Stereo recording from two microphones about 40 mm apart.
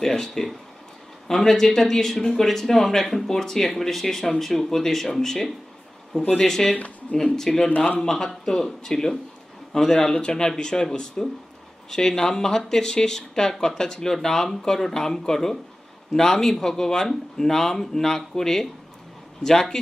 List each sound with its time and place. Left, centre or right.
0.0 s speech: centre